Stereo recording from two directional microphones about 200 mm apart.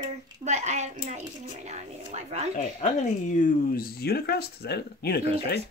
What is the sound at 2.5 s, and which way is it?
Speech, 40° left (ahead or behind).